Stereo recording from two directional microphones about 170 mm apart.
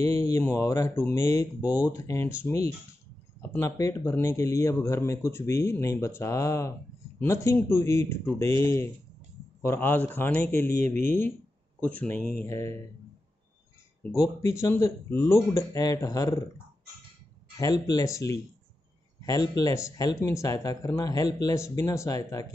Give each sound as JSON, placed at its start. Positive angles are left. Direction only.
{"t": 0.0, "sound": "speech", "side_deg": 15}
{"t": 11.8, "sound": "speech", "side_deg": 10}
{"t": 14.1, "sound": "speech", "side_deg": 15}
{"t": 17.6, "sound": "speech", "side_deg": 20}